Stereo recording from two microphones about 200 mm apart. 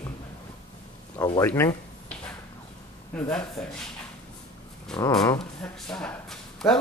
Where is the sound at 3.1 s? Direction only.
5° left (ahead or behind).